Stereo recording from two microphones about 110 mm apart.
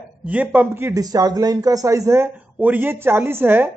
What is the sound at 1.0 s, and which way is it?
Speech, 35° right (ahead or behind).